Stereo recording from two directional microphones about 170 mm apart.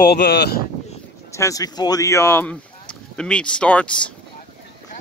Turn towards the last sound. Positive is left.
turn(degrees=5)  # may be behind; listen again after turning